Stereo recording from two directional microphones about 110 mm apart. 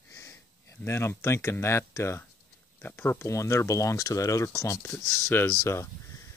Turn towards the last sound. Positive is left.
turn(degrees=25)  # may be behind; listen again after turning